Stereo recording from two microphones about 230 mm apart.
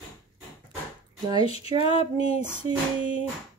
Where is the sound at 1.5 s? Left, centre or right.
Left.